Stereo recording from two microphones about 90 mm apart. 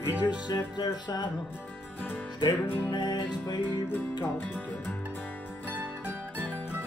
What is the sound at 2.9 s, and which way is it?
Music, 55° left (ahead or behind).